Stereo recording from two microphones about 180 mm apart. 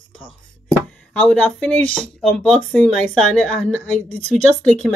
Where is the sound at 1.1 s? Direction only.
5° left (ahead or behind).